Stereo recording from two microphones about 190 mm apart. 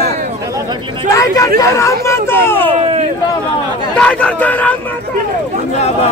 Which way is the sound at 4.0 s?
5° left (ahead or behind).